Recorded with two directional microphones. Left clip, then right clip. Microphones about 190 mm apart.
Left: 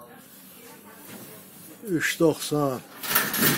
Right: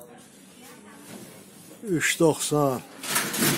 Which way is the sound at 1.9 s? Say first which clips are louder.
Right 1 dB; 30° right (ahead or behind).